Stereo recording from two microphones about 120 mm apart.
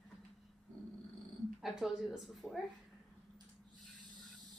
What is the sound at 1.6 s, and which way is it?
A woman's voice, centre (ahead or behind).